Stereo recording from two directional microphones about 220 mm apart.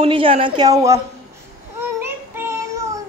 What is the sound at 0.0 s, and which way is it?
A woman's voice, 25° right (ahead or behind).